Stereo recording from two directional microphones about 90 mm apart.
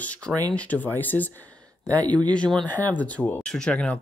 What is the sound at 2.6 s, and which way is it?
Speech, 20° left (ahead or behind).